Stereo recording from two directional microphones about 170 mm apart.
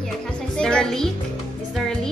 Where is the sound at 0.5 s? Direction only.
5° left (ahead or behind).